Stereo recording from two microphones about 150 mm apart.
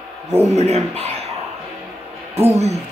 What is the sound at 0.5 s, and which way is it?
Speech, 45° right (ahead or behind).